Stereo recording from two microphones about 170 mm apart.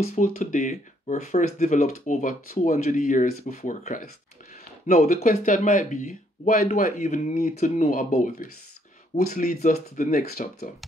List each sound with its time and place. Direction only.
0.1 s speech: 45° left (ahead or behind)